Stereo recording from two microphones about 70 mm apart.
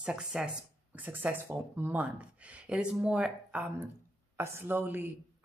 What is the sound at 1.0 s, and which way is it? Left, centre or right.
Speech, right.